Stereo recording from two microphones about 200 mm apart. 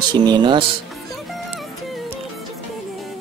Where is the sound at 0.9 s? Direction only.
Centre (ahead or behind).